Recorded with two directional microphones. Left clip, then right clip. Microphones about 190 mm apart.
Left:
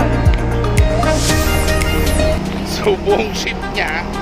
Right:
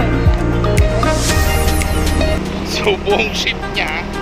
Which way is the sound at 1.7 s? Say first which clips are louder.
Left 2 dB; centre (ahead or behind).